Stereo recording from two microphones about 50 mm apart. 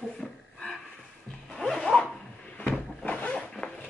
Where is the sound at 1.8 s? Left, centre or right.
Centre.